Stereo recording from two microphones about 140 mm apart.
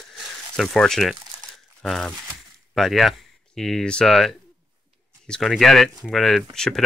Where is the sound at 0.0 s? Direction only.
Centre (ahead or behind).